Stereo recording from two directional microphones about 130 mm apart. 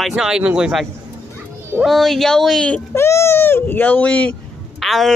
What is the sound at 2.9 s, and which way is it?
Speech, 20° left (ahead or behind).